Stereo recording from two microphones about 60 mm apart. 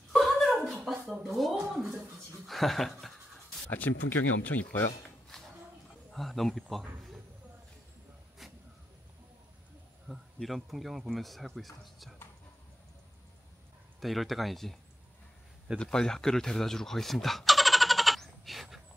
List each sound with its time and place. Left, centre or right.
0.1 s a sound: centre
2.4 s speech: centre
3.7 s speech: left
5.3 s a sound: centre
6.1 s speech: centre
10.0 s speech: centre
13.9 s speech: centre
15.8 s chicken: centre